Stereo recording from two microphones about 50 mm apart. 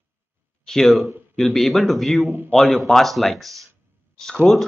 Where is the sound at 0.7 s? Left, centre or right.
Centre.